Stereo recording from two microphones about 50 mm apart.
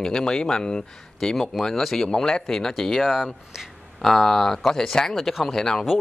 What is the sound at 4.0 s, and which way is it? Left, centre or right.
Speech, centre.